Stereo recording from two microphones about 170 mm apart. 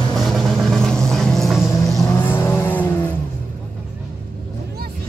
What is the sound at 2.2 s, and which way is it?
Vehicle, 10° left (ahead or behind).